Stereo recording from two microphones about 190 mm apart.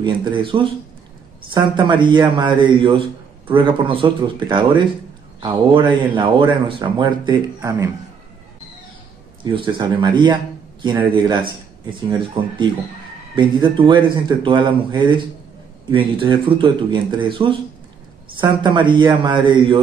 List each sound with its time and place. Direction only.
0.0 s speech: 25° right (ahead or behind)
9.4 s a man's voice: 25° right (ahead or behind)